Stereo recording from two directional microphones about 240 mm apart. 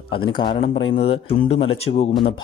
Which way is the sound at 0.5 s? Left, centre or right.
Left.